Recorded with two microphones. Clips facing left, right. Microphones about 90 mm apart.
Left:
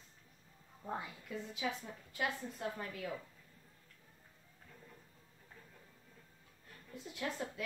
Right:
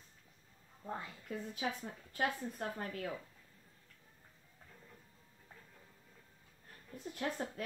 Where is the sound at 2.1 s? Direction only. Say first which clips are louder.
Right 2 dB; 45° right (ahead or behind).